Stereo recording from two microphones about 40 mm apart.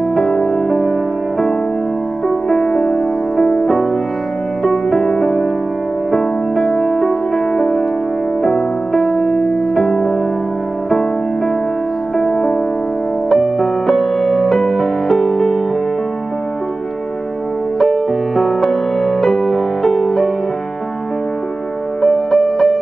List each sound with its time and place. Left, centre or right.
0.1 s music: centre
2.2 s music: centre
12.2 s music: centre
13.3 s music: centre
17.7 s music: centre
22.0 s music: centre